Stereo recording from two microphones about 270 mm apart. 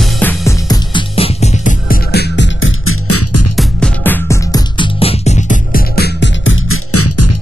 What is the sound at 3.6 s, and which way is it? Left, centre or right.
Music, centre.